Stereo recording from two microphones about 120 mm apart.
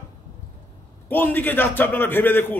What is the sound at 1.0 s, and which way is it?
A man's voice, 15° left (ahead or behind).